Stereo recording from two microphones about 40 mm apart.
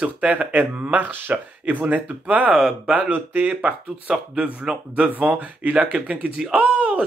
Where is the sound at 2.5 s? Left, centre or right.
Centre.